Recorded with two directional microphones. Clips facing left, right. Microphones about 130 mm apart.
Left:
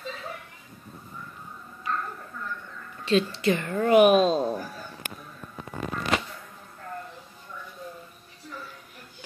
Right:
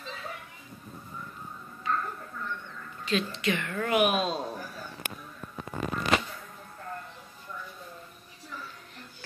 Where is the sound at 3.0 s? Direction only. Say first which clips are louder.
Left 6 dB; 35° left (ahead or behind).